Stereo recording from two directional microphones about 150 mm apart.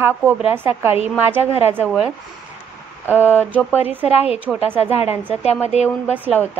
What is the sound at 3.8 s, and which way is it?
A woman's voice, 10° right (ahead or behind).